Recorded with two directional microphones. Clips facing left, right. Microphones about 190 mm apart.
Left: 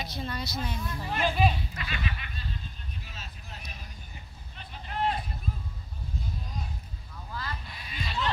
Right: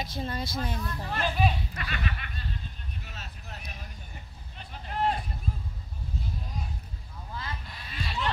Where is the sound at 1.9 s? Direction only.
50° right (ahead or behind).